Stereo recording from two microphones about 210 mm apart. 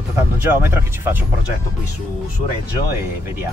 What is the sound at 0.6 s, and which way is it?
Speech, 10° right (ahead or behind).